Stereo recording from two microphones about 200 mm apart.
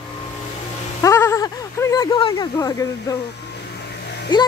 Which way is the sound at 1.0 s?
15° left (ahead or behind).